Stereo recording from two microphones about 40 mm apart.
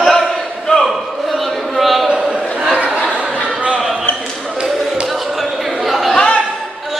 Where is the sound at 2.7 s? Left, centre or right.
Right.